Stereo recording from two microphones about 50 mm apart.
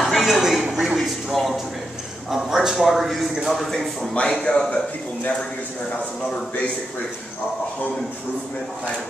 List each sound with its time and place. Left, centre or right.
0.2 s a woman's voice: centre
0.9 s speech: centre
4.1 s speech: left